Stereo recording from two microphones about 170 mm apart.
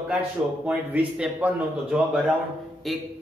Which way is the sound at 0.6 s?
10° right (ahead or behind).